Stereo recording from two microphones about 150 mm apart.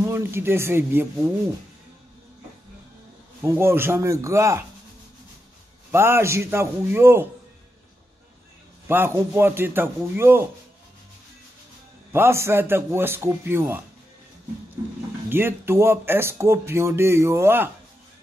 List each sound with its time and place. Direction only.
0.1 s speech: 15° right (ahead or behind)
3.4 s speech: 15° right (ahead or behind)
5.9 s speech: 15° right (ahead or behind)
8.8 s speech: 15° right (ahead or behind)
12.1 s speech: 15° right (ahead or behind)
15.2 s speech: 15° right (ahead or behind)